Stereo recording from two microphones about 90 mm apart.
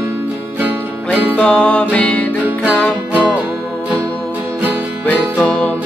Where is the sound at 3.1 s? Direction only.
15° right (ahead or behind).